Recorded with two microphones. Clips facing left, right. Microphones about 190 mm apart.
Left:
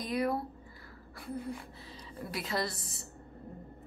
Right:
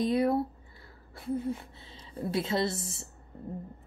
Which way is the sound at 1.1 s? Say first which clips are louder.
Right 7 dB; 20° right (ahead or behind).